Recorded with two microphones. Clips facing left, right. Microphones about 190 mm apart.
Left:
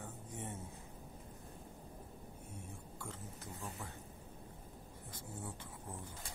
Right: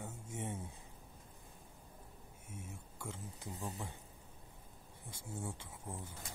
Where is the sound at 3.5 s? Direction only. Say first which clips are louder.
Right 4 dB; 20° right (ahead or behind).